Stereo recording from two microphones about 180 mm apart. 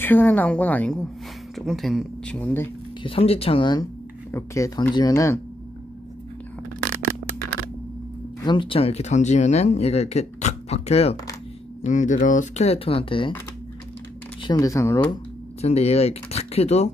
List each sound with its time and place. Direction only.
0.0 s speech: 10° left (ahead or behind)
3.0 s speech: 30° left (ahead or behind)
4.3 s speech: 15° left (ahead or behind)
8.5 s speech: 30° left (ahead or behind)
14.4 s speech: 20° left (ahead or behind)
15.6 s speech: 35° left (ahead or behind)